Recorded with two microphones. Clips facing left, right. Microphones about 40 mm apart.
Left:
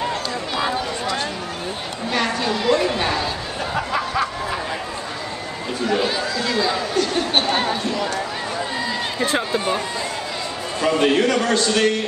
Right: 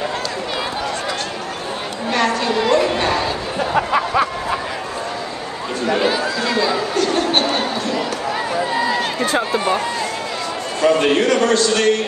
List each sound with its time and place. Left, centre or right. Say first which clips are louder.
2.4 s a woman's voice: right 3 dB; centre
3.7 s a sound: right 5 dB; right
5.9 s chatter: right 3 dB; centre
6.6 s chatter: right 2 dB; centre
8.7 s run: right 8 dB; centre
9.4 s speech: right 3 dB; centre
10.8 s a man's voice: right 2 dB; centre